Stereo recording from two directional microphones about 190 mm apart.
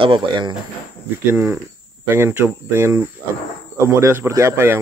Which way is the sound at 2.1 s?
10° right (ahead or behind).